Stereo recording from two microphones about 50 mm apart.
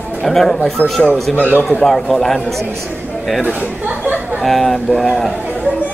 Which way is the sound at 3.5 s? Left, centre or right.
Right.